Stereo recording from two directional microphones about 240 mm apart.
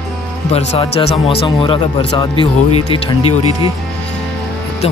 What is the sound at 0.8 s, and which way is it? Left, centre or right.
Speech, left.